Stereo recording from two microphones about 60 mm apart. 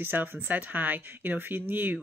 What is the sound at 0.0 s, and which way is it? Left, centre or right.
Speech, right.